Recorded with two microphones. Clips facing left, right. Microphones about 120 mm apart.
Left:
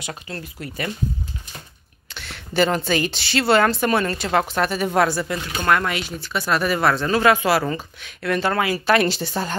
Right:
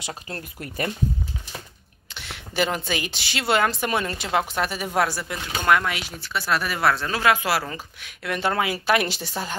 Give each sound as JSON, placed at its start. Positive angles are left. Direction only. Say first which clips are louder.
{"t": 0.3, "sound": "speech", "louder": "left 2 dB", "side_deg": -40}
{"t": 2.1, "sound": "a woman's voice", "louder": "left 5 dB", "side_deg": -15}